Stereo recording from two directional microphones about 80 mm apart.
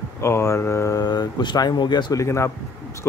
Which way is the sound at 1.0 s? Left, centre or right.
Left.